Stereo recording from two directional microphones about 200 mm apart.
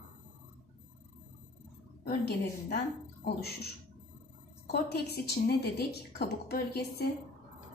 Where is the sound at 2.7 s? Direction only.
55° left (ahead or behind).